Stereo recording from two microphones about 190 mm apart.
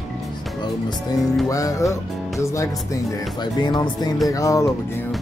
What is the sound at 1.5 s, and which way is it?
Music, 15° left (ahead or behind).